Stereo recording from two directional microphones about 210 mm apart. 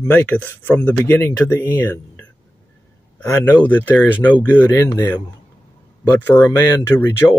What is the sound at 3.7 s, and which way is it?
Speech, 10° left (ahead or behind).